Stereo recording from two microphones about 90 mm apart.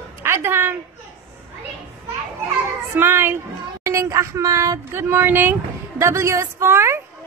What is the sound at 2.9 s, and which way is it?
Speech, 25° right (ahead or behind).